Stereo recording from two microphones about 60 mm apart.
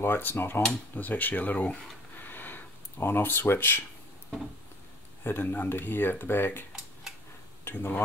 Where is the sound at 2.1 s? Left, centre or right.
Left.